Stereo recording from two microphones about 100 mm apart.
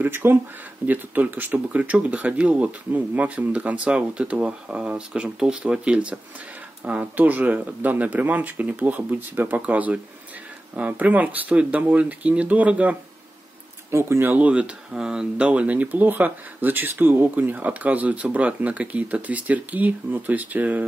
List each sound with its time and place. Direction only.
0.0 s speech: 20° right (ahead or behind)
13.8 s speech: 25° right (ahead or behind)